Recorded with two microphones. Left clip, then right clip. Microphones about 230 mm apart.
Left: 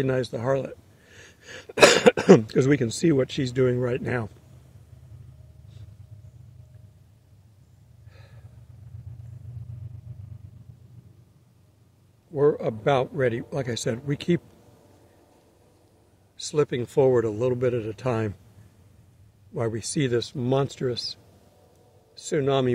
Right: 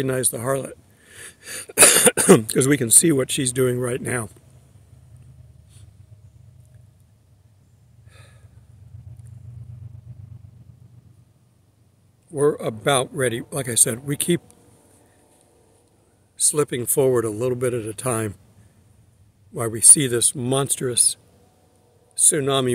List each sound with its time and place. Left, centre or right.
0.0 s speech: centre
8.1 s a sound: centre
12.4 s speech: centre
16.3 s speech: centre
19.5 s speech: centre